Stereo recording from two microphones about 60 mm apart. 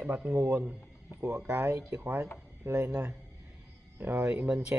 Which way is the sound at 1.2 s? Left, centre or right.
Right.